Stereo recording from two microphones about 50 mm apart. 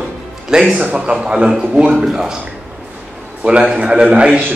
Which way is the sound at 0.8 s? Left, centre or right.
Right.